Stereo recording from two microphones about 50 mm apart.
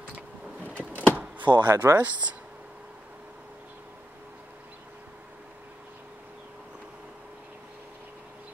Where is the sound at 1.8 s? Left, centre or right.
Right.